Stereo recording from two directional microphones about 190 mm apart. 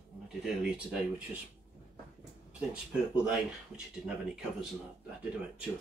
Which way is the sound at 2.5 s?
5° right (ahead or behind).